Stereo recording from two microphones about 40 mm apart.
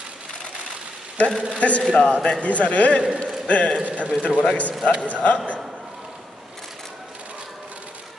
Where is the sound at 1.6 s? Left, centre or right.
Left.